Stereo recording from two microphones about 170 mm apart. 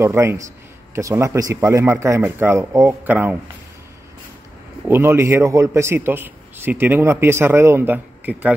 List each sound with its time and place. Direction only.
0.0 s a man's voice: 15° right (ahead or behind)
4.8 s a man's voice: 15° right (ahead or behind)